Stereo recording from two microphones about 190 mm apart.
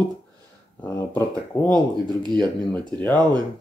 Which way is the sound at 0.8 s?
10° left (ahead or behind).